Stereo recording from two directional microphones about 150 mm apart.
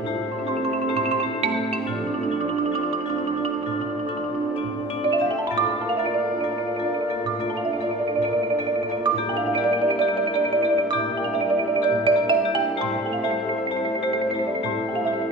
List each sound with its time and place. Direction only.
12.0 s music: 35° right (ahead or behind)